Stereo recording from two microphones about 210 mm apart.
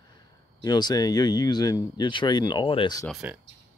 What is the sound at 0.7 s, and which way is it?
Speech, 20° left (ahead or behind).